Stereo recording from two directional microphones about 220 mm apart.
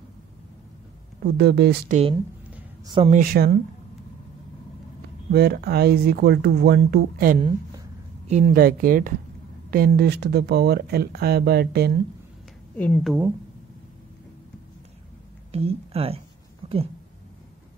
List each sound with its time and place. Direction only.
1.2 s speech: 50° right (ahead or behind)
2.5 s a sound: 20° right (ahead or behind)
3.1 s speech: 40° right (ahead or behind)
5.3 s speech: 45° right (ahead or behind)
7.3 s a woman's voice: 25° right (ahead or behind)
8.3 s speech: 35° right (ahead or behind)
12.7 s speech: 10° left (ahead or behind)
15.5 s speech: 25° right (ahead or behind)